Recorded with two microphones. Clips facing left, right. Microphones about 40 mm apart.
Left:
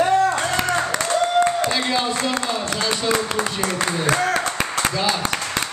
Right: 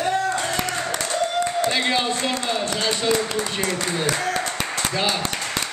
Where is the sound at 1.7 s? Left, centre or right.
Right.